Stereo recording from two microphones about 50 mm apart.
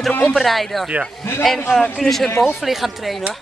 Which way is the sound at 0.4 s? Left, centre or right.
Centre.